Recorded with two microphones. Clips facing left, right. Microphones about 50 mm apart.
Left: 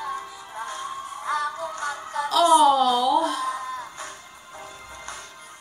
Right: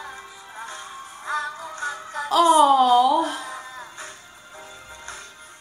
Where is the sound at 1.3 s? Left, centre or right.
Right.